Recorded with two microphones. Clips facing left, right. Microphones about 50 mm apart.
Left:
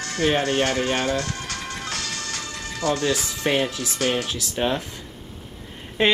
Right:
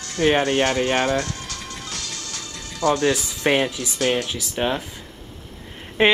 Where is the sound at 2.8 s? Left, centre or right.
Right.